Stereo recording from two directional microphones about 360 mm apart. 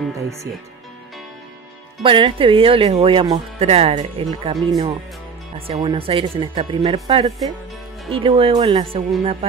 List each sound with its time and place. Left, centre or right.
0.2 s speech: centre
2.0 s speech: centre
5.7 s speech: centre